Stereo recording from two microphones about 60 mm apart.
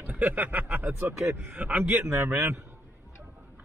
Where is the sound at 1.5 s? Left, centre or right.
Right.